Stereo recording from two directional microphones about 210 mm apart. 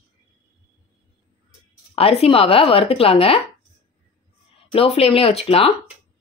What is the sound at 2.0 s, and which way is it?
A woman's voice, 30° left (ahead or behind).